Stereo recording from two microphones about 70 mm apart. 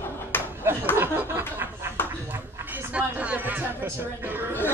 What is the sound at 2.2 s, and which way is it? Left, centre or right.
Speech, right.